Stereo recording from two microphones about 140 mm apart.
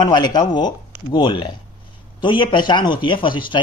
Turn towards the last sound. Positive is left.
turn(degrees=35)  # may be behind; listen again after turning